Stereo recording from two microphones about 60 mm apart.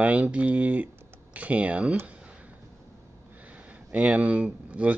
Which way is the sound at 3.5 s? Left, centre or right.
Right.